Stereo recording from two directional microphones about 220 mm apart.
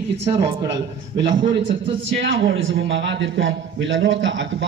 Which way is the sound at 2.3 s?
60° right (ahead or behind).